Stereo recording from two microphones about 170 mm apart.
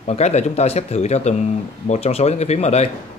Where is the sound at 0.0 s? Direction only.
40° left (ahead or behind).